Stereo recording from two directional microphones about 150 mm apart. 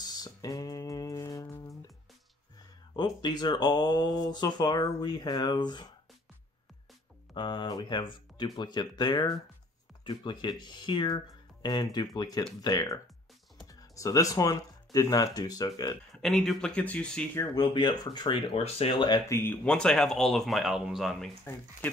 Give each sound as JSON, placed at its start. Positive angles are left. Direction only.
{"t": 0.0, "sound": "music", "side_deg": 25}
{"t": 3.0, "sound": "speech", "side_deg": 30}
{"t": 7.3, "sound": "speech", "side_deg": 30}
{"t": 16.2, "sound": "speech", "side_deg": 5}
{"t": 17.6, "sound": "speech", "side_deg": 30}
{"t": 19.3, "sound": "speech", "side_deg": 15}